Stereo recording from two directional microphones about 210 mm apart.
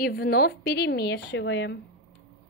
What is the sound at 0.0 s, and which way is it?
A woman's voice, 45° left (ahead or behind).